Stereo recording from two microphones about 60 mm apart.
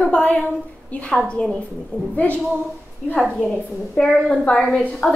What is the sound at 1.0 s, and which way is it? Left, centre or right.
A woman's voice, centre.